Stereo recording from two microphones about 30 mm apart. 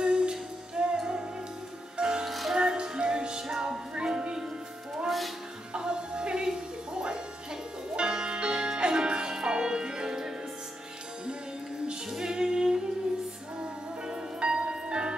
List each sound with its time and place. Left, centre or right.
0.0 s music: right
2.2 s music: centre
2.5 s music: right
5.7 s music: right
12.1 s music: centre